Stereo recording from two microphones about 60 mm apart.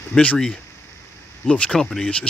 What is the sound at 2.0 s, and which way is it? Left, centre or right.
Speech, centre.